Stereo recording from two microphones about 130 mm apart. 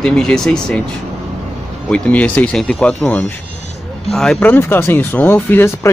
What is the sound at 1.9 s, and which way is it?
Speech, 10° left (ahead or behind).